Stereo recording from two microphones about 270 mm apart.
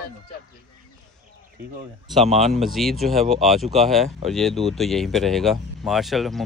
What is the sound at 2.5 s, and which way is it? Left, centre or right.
Speech, centre.